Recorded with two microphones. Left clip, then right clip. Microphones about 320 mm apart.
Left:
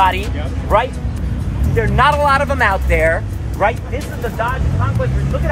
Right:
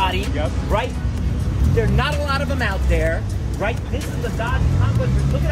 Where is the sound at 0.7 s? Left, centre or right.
Centre.